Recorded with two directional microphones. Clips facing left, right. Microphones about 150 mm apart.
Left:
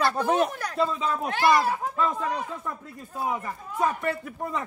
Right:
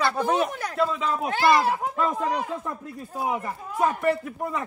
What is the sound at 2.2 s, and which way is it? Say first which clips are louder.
Speech: right 3 dB; 30° right (ahead or behind).